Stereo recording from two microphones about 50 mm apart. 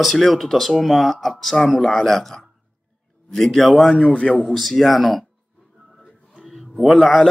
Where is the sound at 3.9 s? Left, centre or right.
Centre.